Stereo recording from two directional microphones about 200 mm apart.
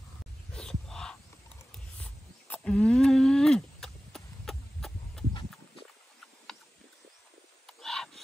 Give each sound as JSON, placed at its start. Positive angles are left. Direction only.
{"t": 0.5, "sound": "a sound", "side_deg": 5}
{"t": 2.0, "sound": "wild animals", "side_deg": 5}
{"t": 7.6, "sound": "wild animals", "side_deg": 0}